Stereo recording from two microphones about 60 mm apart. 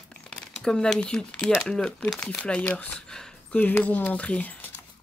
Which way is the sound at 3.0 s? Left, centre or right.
Centre.